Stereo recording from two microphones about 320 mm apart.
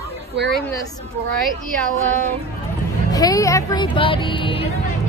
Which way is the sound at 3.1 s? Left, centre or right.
Centre.